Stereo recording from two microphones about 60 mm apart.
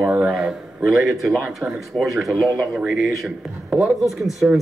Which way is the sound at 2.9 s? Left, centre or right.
Centre.